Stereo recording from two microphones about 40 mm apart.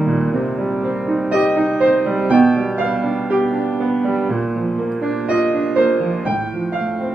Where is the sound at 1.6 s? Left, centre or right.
Right.